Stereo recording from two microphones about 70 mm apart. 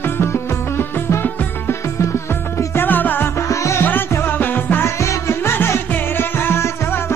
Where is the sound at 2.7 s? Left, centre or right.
Left.